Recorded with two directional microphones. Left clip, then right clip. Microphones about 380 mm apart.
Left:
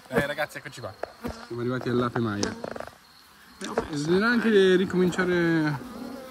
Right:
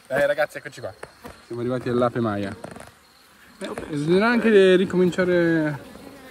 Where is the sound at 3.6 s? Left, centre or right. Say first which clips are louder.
Right 1 dB; centre.